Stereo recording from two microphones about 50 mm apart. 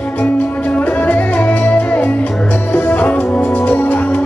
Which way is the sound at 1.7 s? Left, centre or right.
Left.